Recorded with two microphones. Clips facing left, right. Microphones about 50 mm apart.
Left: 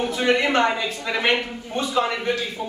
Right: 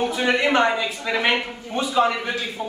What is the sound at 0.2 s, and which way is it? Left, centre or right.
Speech, centre.